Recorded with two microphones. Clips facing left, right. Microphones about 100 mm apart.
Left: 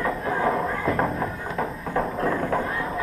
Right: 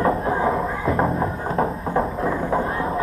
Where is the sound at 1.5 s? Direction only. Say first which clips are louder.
Right 6 dB; 30° right (ahead or behind).